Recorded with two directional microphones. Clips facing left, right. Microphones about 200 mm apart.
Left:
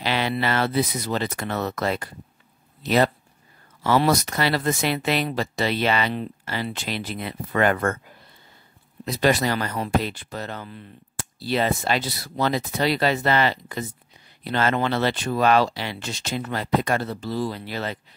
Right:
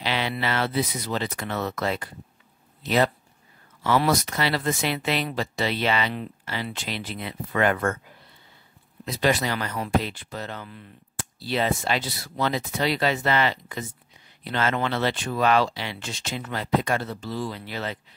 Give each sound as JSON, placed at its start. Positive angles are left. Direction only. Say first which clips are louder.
{"t": 0.0, "sound": "a sound", "louder": "left 3 dB", "side_deg": 45}
{"t": 0.4, "sound": "speech", "louder": "left 3 dB", "side_deg": 45}
{"t": 9.0, "sound": "speech", "louder": "left 3 dB", "side_deg": 40}